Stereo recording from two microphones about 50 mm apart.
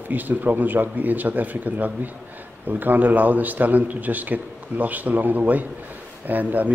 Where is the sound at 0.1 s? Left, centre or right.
Right.